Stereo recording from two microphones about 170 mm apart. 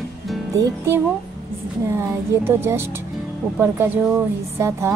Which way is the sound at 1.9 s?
15° right (ahead or behind).